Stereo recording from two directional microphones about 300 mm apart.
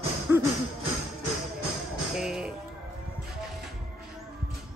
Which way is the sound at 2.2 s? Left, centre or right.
Centre.